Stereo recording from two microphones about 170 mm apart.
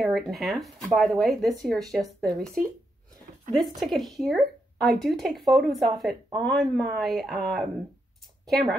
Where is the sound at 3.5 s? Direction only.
Centre (ahead or behind).